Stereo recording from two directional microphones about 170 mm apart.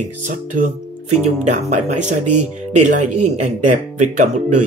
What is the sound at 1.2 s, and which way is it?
Speech, 45° right (ahead or behind).